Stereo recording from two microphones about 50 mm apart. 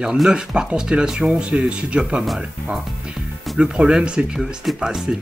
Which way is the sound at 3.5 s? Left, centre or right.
Centre.